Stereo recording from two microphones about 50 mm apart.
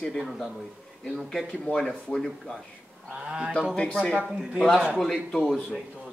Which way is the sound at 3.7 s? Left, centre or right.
Left.